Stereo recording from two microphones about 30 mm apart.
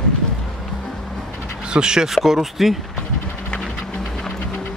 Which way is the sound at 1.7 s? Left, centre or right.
Right.